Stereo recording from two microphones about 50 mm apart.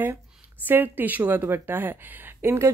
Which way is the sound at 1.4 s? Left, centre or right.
Right.